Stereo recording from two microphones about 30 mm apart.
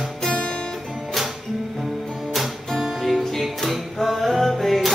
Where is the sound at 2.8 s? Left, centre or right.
Centre.